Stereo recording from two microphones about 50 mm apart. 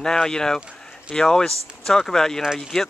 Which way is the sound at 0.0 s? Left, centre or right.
Centre.